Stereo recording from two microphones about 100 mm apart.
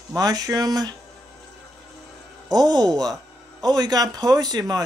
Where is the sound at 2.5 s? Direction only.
40° right (ahead or behind).